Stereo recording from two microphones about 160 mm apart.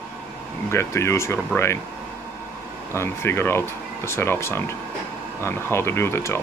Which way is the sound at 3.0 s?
15° left (ahead or behind).